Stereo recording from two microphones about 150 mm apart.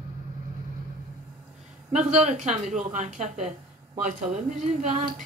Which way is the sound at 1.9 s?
50° right (ahead or behind).